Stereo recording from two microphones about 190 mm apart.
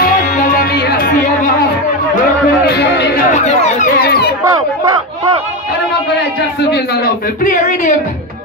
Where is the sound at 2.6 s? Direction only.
60° left (ahead or behind).